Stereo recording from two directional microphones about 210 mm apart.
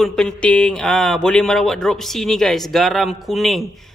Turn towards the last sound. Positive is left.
turn(degrees=0)  # may be behind; listen again after turning